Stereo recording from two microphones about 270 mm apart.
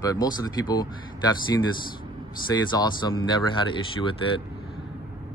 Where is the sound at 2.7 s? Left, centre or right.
Centre.